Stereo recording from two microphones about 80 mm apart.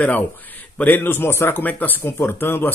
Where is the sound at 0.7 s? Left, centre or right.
Left.